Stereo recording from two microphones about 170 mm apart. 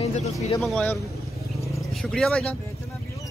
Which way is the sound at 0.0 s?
40° left (ahead or behind).